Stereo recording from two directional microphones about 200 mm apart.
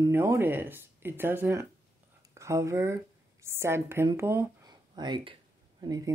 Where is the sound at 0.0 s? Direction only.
15° right (ahead or behind).